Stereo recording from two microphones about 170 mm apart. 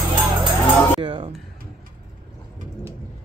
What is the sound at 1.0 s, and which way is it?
Music, 30° right (ahead or behind).